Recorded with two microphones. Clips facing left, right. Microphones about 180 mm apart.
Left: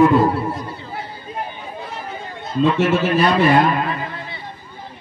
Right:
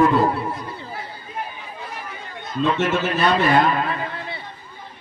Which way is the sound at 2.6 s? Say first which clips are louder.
Left 4 dB; 10° left (ahead or behind).